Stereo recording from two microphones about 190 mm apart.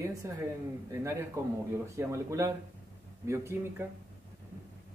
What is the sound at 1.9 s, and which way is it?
Speech, 15° right (ahead or behind).